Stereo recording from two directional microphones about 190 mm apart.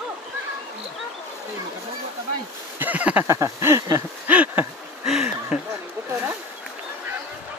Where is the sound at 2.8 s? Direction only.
10° right (ahead or behind).